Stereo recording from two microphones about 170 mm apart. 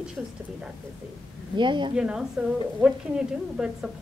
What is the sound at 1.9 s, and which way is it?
Speech, 5° right (ahead or behind).